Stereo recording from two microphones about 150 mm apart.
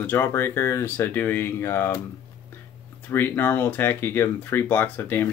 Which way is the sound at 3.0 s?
15° left (ahead or behind).